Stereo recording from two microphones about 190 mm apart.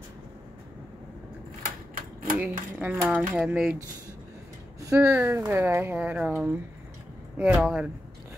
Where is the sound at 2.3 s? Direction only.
10° right (ahead or behind).